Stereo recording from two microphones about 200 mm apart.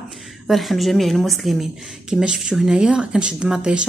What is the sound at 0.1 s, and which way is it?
Speech, centre (ahead or behind).